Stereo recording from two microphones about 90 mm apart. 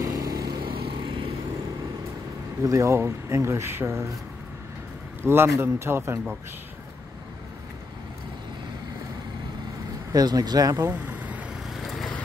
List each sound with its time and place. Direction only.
0.0 s vehicle: 40° right (ahead or behind)
0.7 s vehicle: 75° right (ahead or behind)
2.6 s speech: 35° right (ahead or behind)
5.2 s a man's voice: 25° right (ahead or behind)
10.1 s speech: 45° right (ahead or behind)
10.9 s vehicle: 20° right (ahead or behind)
11.7 s vehicle: centre (ahead or behind)